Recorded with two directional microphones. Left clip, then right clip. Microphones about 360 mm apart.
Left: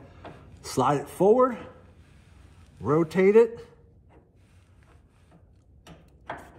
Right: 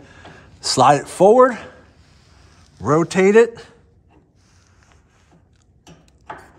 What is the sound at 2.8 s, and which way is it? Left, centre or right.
Speech, right.